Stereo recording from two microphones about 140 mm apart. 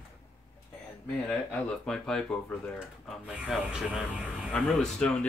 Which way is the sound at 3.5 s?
5° right (ahead or behind).